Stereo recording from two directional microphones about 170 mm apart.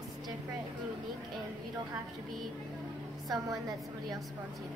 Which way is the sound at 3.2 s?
20° right (ahead or behind).